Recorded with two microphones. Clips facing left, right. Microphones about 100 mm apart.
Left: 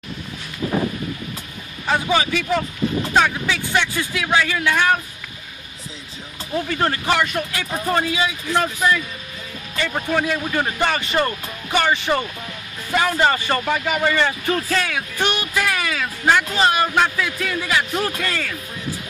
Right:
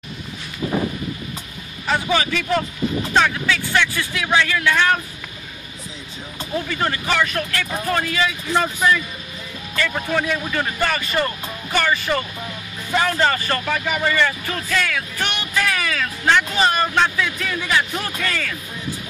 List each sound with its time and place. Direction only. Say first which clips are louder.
1.9 s a man's voice: left 1 dB; 15° left (ahead or behind)
7.1 s speech: left 1 dB; 10° left (ahead or behind)
8.5 s speech: right 1 dB; centre (ahead or behind)
9.8 s speech: right 1 dB; 15° left (ahead or behind)
10.0 s speech: left 1 dB; 5° left (ahead or behind); by 12.3 s 25° left (ahead or behind)
12.9 s speech: left 1 dB; 5° left (ahead or behind)
14.1 s speech: left 1 dB; 25° left (ahead or behind); by 18.6 s centre (ahead or behind)